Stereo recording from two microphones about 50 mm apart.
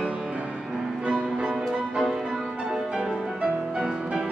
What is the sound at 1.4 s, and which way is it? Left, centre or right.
Music, centre.